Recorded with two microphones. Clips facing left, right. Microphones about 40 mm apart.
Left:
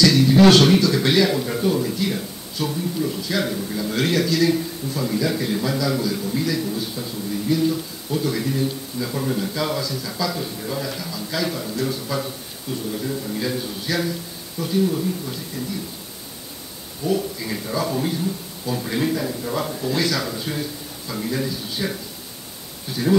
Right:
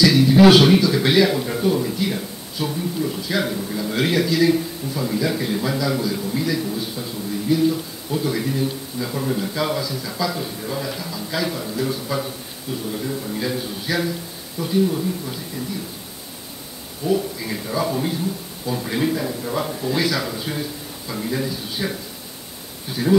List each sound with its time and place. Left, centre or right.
0.0 s a man's voice: centre
17.0 s a man's voice: centre